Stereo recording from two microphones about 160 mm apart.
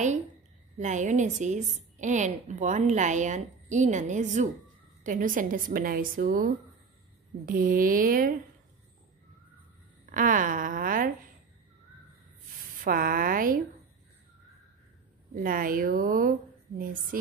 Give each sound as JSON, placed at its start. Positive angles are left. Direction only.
{"t": 0.7, "sound": "a woman's voice", "side_deg": -50}
{"t": 10.0, "sound": "a woman's voice", "side_deg": -55}
{"t": 12.8, "sound": "a woman's voice", "side_deg": -60}
{"t": 15.3, "sound": "a woman's voice", "side_deg": -60}